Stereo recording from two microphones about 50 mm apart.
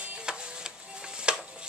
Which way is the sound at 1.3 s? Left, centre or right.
Centre.